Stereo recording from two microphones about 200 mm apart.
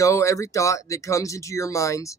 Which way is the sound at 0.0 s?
15° left (ahead or behind).